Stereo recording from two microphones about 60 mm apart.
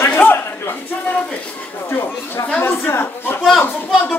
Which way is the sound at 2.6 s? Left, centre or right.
Left.